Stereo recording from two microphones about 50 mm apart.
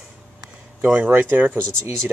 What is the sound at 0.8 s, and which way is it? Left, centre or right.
Speech, right.